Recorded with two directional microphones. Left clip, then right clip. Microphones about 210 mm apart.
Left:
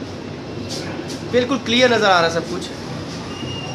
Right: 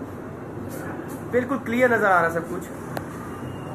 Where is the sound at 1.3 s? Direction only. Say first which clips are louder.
Left 6 dB; 10° left (ahead or behind).